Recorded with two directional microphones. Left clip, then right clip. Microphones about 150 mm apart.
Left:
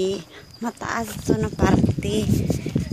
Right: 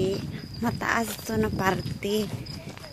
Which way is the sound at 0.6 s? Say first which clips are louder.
Right 1 dB; 10° left (ahead or behind).